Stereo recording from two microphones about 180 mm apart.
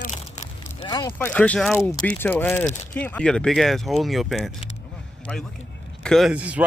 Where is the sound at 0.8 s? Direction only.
25° left (ahead or behind).